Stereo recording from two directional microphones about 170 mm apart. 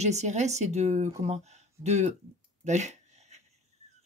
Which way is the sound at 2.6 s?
45° right (ahead or behind).